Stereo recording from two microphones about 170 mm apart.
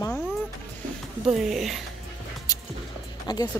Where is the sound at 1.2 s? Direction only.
Centre (ahead or behind).